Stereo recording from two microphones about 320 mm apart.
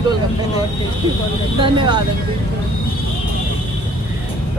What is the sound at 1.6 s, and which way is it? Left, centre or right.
Speech, centre.